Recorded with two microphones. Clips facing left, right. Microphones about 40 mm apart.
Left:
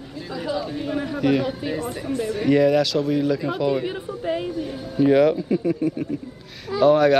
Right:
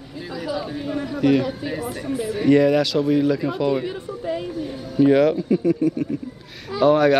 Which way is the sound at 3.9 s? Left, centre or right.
Centre.